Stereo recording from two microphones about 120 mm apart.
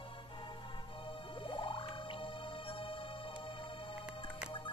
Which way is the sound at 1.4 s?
45° left (ahead or behind).